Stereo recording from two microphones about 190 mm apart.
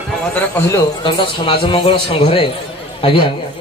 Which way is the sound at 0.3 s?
15° left (ahead or behind).